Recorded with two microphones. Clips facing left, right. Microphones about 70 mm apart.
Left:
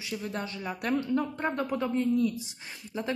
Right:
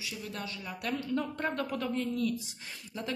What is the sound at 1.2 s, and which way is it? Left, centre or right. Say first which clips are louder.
A woman's voice: left 3 dB; centre.